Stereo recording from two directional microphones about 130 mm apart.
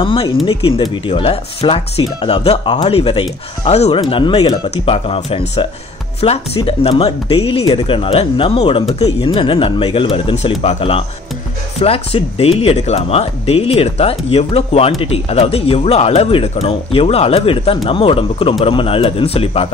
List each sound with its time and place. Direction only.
0.0 s speech: 40° left (ahead or behind)
4.1 s speech: 45° left (ahead or behind)